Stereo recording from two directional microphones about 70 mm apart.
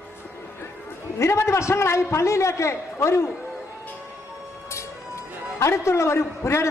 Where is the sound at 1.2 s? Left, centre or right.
Left.